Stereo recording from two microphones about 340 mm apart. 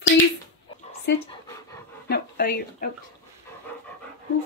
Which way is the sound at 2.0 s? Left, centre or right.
Left.